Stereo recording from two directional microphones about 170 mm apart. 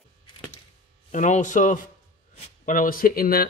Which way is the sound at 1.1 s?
45° left (ahead or behind).